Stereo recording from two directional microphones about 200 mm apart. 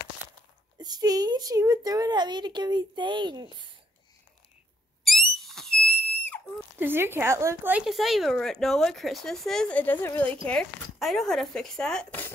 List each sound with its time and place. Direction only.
0.7 s a woman's voice: 20° right (ahead or behind)
5.0 s a sound: centre (ahead or behind)
6.8 s a woman's voice: 10° right (ahead or behind); by 12.3 s 5° left (ahead or behind)